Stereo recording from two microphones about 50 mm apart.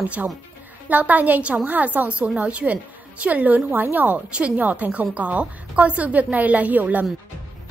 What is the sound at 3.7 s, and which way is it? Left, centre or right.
A woman's voice, right.